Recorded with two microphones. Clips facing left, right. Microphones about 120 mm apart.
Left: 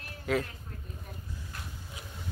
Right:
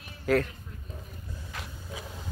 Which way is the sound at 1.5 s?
90° right.